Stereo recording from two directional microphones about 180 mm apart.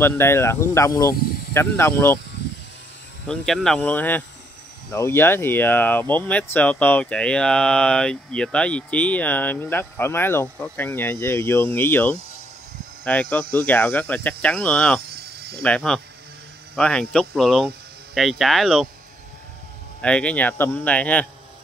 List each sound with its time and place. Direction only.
0.0 s speech: 15° left (ahead or behind)
1.1 s a sound: 60° left (ahead or behind)
1.8 s speech: 15° left (ahead or behind)
3.3 s speech: 5° left (ahead or behind)
20.0 s speech: 5° left (ahead or behind)